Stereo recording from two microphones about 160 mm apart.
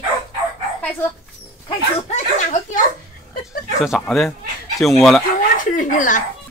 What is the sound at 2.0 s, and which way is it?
Speech, 45° left (ahead or behind).